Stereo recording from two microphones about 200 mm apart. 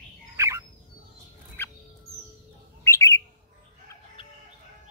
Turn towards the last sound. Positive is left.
turn(degrees=25)  # may be behind; listen again after turning